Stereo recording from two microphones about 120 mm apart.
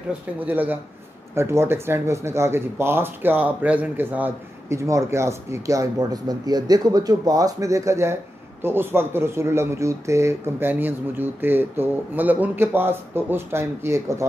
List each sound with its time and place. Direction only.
0.4 s speech: 15° right (ahead or behind)
4.7 s speech: 25° right (ahead or behind)